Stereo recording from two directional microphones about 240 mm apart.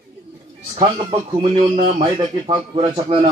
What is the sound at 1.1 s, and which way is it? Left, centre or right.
Speech, right.